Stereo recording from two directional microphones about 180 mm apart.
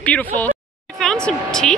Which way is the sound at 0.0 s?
5° left (ahead or behind).